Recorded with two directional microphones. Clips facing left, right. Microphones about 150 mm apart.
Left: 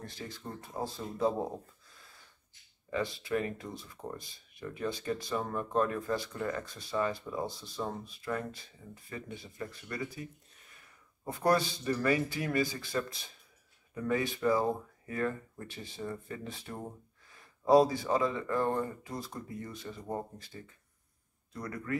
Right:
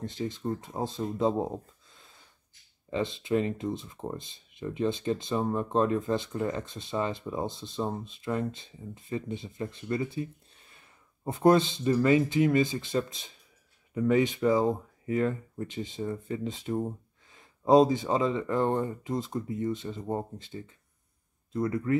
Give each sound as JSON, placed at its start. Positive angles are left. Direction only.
{"t": 0.0, "sound": "speech", "side_deg": -20}